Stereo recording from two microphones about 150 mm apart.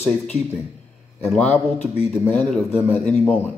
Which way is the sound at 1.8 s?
45° left (ahead or behind).